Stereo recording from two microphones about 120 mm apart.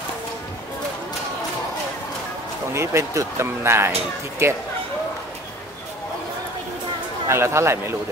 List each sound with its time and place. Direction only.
2.7 s speech: 25° right (ahead or behind)
7.2 s speech: 20° right (ahead or behind)